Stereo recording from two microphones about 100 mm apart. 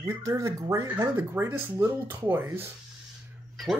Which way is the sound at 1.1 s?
25° right (ahead or behind).